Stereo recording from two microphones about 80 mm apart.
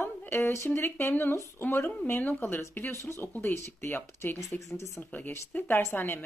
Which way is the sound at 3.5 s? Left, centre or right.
Left.